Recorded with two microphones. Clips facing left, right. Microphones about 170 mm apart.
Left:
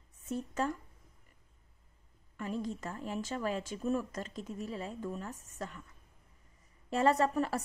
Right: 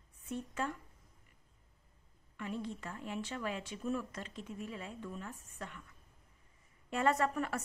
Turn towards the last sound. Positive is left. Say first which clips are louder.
# left 4 dB
turn(degrees=35)  # may be behind; listen again after turning